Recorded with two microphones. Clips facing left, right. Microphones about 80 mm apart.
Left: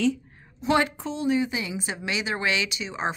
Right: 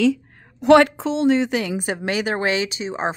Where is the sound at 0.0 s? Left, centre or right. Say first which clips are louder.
Right 6 dB; right.